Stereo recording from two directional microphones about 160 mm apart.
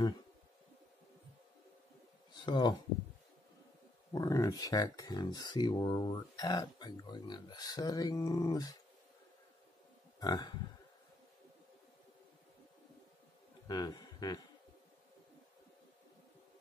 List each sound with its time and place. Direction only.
2.3 s speech: 30° left (ahead or behind)
4.1 s speech: 20° left (ahead or behind)
10.2 s speech: 25° left (ahead or behind)
13.7 s a man's voice: 25° left (ahead or behind)